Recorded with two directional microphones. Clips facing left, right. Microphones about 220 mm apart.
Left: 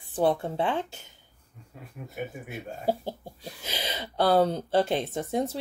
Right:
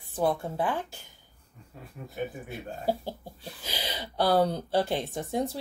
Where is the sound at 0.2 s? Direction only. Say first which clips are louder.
Left 2 dB; 30° left (ahead or behind).